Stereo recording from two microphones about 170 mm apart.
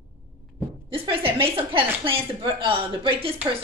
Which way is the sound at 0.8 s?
30° right (ahead or behind).